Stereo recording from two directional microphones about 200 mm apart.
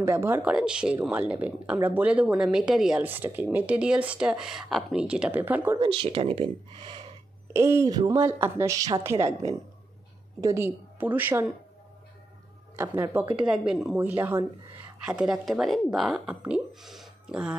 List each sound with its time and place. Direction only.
0.0 s speech: 10° right (ahead or behind)
5.8 s speech: 25° right (ahead or behind)
7.5 s speech: 15° right (ahead or behind)
10.4 s speech: 15° right (ahead or behind)
12.7 s speech: 10° right (ahead or behind)